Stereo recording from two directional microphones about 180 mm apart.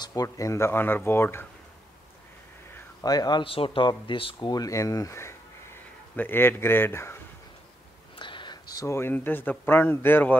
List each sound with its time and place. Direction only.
0.0 s speech: 20° left (ahead or behind)
2.7 s speech: 20° left (ahead or behind)
8.2 s whispering: 25° left (ahead or behind)
8.7 s speech: 15° left (ahead or behind)